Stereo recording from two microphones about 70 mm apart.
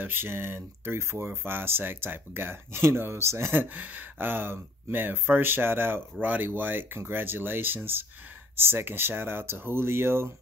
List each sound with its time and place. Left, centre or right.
0.0 s speech: right
3.6 s speech: right